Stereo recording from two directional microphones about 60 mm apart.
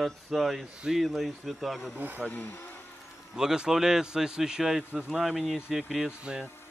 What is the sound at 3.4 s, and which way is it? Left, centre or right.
A man's voice, centre.